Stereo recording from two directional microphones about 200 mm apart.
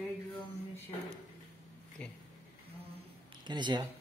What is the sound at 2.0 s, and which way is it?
Speech, 5° left (ahead or behind).